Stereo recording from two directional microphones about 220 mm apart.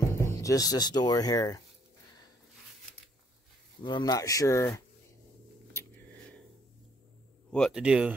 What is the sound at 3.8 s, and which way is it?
Speech, 20° left (ahead or behind).